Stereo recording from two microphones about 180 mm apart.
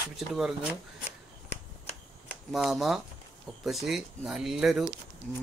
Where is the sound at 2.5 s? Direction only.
Centre (ahead or behind).